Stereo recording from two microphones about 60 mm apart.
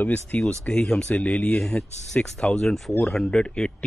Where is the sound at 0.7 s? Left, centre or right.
Centre.